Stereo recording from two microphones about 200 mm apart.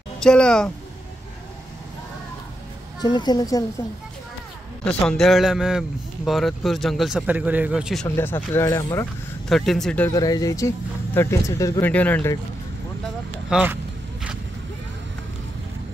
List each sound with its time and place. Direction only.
0.2 s speech: 5° left (ahead or behind)
3.0 s a woman's voice: 20° left (ahead or behind)
4.8 s speech: 5° left (ahead or behind)
8.2 s speech: 10° left (ahead or behind)
9.5 s speech: centre (ahead or behind)
10.1 s speech: 20° left (ahead or behind)
13.5 s speech: 5° right (ahead or behind)